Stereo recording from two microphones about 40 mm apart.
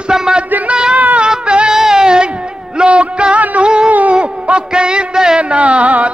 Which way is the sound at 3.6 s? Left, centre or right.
Right.